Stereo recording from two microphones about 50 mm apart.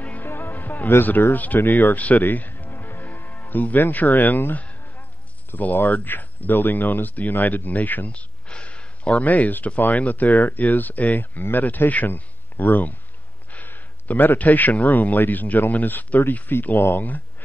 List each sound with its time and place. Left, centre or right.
0.2 s music: left
1.3 s a man's voice: left
8.1 s a sound: left
9.2 s a man's voice: left